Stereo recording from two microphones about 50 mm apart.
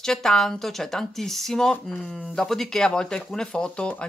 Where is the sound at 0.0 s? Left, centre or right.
Centre.